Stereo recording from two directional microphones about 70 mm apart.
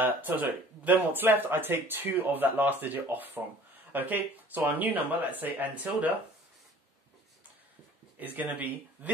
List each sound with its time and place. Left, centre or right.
0.0 s speech: right
8.2 s speech: right